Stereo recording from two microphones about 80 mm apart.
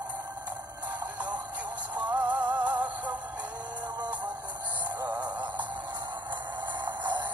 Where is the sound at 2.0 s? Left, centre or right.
Right.